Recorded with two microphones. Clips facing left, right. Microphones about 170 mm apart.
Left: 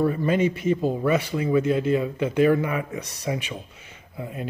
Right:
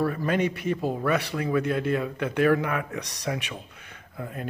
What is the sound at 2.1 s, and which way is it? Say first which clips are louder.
Speech: left 4 dB; 60° right (ahead or behind).